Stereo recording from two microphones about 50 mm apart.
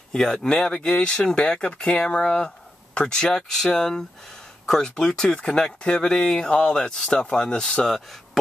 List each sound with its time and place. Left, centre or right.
0.1 s speech: centre